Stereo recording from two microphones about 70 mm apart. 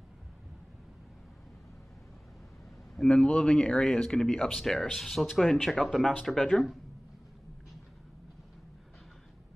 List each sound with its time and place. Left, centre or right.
3.0 s speech: centre
6.3 s speech: centre